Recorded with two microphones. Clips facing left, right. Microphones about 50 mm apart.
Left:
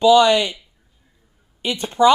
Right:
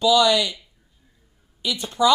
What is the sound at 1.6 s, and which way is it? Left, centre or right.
Speech, left.